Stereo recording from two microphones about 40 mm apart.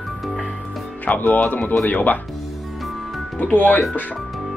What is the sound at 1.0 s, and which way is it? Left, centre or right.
Speech, left.